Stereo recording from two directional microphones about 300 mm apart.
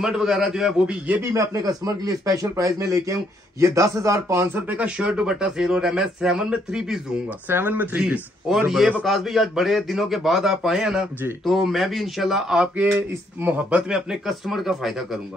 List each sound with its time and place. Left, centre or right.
0.0 s speech: centre